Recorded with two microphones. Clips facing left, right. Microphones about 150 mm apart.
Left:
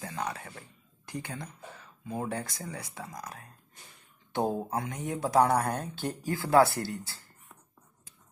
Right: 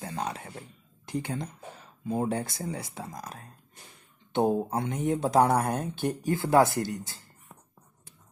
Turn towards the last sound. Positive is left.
turn(degrees=-20)  # may be behind; listen again after turning